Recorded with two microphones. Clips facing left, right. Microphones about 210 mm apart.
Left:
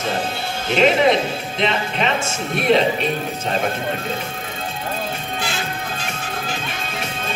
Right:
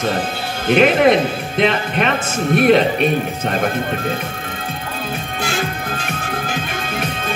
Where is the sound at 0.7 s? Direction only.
55° right (ahead or behind).